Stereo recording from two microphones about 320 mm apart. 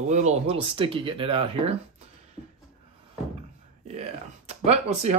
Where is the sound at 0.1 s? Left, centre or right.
Right.